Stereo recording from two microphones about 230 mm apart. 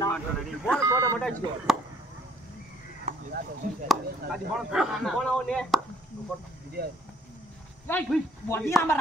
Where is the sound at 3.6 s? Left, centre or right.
Right.